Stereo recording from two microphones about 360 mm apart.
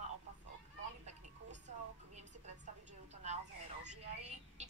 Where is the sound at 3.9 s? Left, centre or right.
Centre.